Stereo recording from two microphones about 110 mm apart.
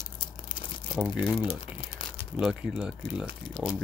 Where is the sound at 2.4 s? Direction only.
5° right (ahead or behind).